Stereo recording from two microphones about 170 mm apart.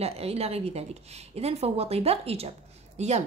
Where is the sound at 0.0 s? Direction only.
35° right (ahead or behind).